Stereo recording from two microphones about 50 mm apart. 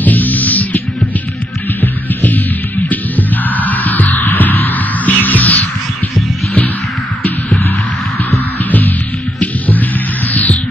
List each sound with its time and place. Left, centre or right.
0.0 s music: left
8.3 s music: left